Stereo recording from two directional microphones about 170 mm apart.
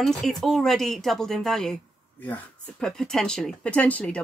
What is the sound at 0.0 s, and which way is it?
Speech, centre (ahead or behind).